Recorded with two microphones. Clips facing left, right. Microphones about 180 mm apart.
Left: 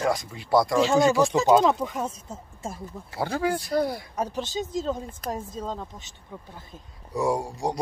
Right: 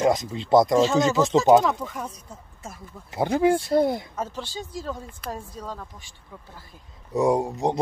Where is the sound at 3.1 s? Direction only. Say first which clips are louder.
Right 6 dB; 20° right (ahead or behind).